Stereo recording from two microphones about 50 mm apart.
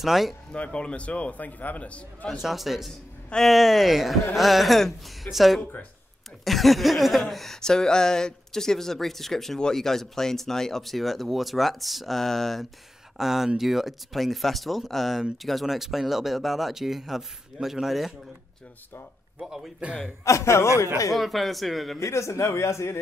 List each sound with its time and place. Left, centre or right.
0.0 s speech: centre
0.5 s a man's voice: centre
2.3 s speech: centre
13.2 s speech: centre
19.3 s a man's voice: centre
20.2 s a man's voice: left
21.1 s speech: centre
22.0 s speech: left